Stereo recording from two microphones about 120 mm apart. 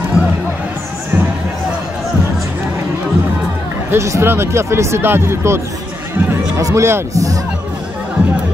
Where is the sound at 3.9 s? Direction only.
20° right (ahead or behind).